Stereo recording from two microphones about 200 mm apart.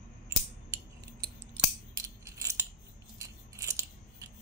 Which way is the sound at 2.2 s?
15° right (ahead or behind).